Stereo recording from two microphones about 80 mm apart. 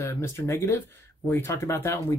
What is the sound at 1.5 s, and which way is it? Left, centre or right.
Speech, left.